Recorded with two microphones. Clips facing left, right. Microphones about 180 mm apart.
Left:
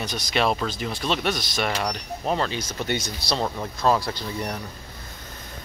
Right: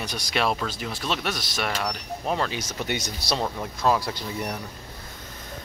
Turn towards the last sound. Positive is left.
turn(degrees=-10)  # may be behind; listen again after turning